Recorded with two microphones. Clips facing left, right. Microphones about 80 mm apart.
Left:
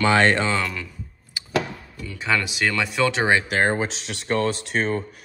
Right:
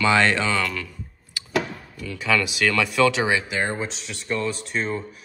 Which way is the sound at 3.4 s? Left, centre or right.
Left.